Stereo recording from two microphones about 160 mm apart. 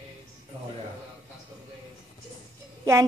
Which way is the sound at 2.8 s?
20° right (ahead or behind).